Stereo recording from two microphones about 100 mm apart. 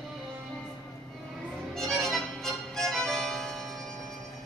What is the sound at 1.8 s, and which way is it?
Music, centre (ahead or behind).